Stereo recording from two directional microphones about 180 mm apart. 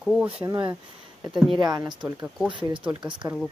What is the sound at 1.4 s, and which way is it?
Speech, 25° right (ahead or behind).